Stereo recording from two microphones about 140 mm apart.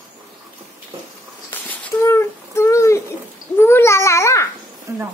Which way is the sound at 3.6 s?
15° left (ahead or behind).